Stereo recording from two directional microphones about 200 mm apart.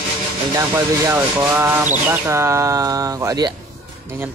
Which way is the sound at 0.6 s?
10° right (ahead or behind).